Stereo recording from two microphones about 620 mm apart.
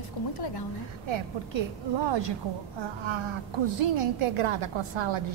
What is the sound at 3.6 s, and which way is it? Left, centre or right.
A woman's voice, right.